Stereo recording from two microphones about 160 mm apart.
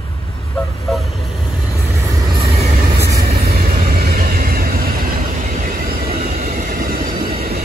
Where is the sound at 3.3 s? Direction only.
70° right (ahead or behind).